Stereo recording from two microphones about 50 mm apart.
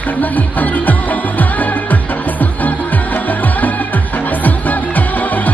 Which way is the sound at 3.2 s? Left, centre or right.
Left.